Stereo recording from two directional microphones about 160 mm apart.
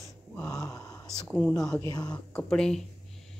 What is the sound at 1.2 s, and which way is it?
Speech, 5° left (ahead or behind).